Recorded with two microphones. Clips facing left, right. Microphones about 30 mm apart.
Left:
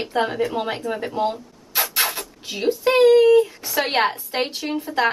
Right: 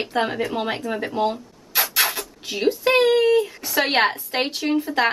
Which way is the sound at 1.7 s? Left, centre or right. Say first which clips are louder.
Right 1 dB; centre.